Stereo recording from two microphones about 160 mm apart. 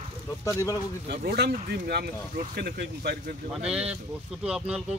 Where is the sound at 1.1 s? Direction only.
75° right (ahead or behind).